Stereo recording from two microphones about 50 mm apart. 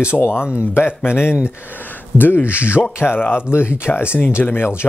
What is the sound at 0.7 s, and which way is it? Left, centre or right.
Speech, left.